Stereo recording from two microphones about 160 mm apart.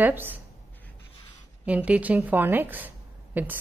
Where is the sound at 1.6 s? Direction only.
10° right (ahead or behind).